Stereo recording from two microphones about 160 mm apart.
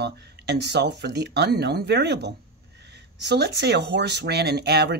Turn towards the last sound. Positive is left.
turn(degrees=-90)